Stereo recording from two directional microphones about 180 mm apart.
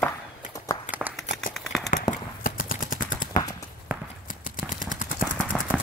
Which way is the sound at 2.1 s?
50° left (ahead or behind).